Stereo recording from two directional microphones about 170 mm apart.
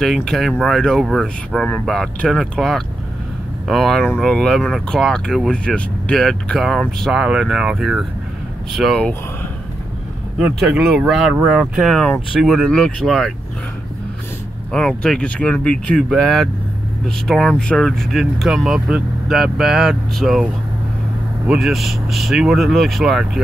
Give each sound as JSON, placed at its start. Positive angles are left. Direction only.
{"t": 0.0, "sound": "speech", "side_deg": 0}
{"t": 10.4, "sound": "speech", "side_deg": 0}
{"t": 14.7, "sound": "speech", "side_deg": 5}
{"t": 21.5, "sound": "speech", "side_deg": 0}